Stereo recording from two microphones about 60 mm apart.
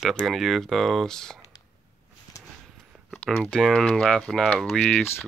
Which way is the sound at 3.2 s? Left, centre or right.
Centre.